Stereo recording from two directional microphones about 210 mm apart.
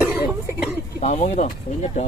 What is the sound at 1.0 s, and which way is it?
Speech, 30° left (ahead or behind).